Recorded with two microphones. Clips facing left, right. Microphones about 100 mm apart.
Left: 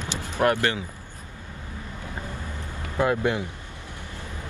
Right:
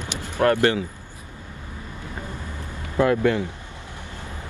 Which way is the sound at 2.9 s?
20° left (ahead or behind).